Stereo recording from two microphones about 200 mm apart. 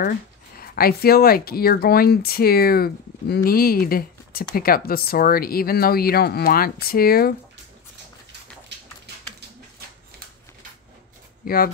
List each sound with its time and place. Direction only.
0.6 s speech: 50° left (ahead or behind)
8.7 s a sound: 60° right (ahead or behind)
11.4 s speech: 45° left (ahead or behind)